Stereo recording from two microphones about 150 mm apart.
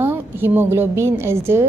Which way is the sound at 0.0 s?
15° right (ahead or behind).